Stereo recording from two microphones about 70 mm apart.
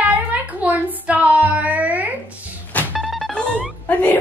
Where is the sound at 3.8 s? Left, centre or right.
Left.